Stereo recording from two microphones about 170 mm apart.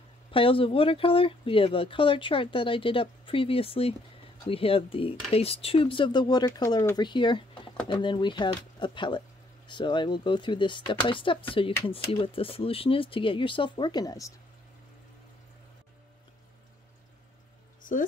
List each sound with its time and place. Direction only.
0.3 s speech: 30° left (ahead or behind)
17.8 s speech: 50° left (ahead or behind)